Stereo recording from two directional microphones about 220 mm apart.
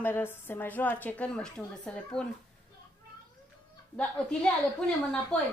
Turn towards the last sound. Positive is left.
turn(degrees=5)  # may be behind; listen again after turning